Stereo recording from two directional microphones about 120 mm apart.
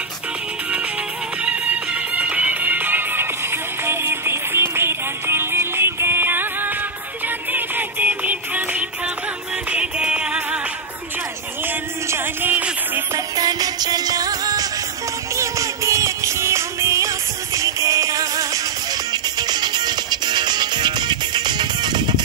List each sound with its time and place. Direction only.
1.4 s music: 10° right (ahead or behind)
12.1 s music: 15° right (ahead or behind)
13.4 s music: 35° right (ahead or behind)